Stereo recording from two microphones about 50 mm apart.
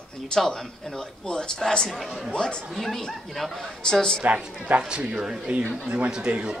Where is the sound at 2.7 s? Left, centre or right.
Centre.